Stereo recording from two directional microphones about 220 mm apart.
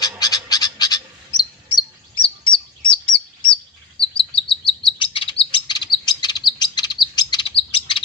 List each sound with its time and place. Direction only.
0.0 s bird: 15° left (ahead or behind)
2.2 s chirp: 20° left (ahead or behind)